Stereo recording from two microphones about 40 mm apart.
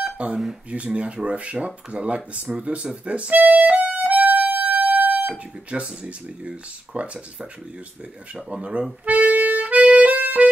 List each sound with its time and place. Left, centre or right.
0.0 s telephone dialing: right
0.7 s speech: right
3.3 s music: right
5.3 s speech: right
8.4 s speech: right
9.0 s music: right